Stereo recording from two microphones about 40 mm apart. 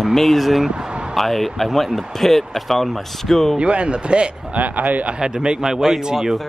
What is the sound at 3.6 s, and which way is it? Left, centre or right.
Speech, right.